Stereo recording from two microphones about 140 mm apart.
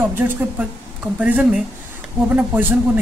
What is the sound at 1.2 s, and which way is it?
Speech, 10° right (ahead or behind).